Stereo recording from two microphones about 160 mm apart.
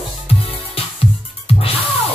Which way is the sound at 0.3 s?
35° left (ahead or behind).